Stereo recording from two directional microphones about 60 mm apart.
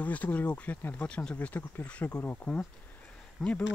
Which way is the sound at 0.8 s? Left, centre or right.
Left.